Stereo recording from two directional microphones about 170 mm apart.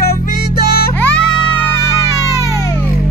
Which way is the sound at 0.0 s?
65° left (ahead or behind).